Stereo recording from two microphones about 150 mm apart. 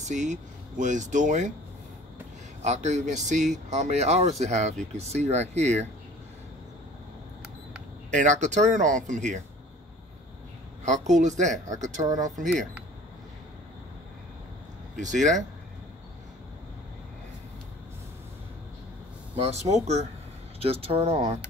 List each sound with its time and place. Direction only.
0.0 s speech: 55° right (ahead or behind)
2.6 s speech: 50° right (ahead or behind)
8.1 s speech: 55° right (ahead or behind)
10.9 s speech: 55° right (ahead or behind)
15.0 s speech: 55° right (ahead or behind)
19.3 s speech: 45° right (ahead or behind)